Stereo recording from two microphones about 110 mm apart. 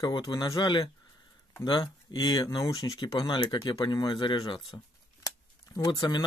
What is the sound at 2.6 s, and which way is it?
Speech, 35° left (ahead or behind).